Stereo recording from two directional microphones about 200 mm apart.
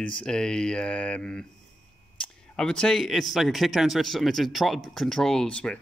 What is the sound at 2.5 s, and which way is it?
Speech, 5° left (ahead or behind).